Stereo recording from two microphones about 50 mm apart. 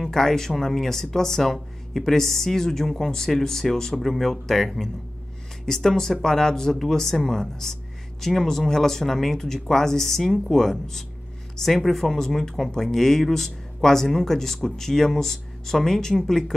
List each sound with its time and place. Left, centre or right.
0.0 s speech: centre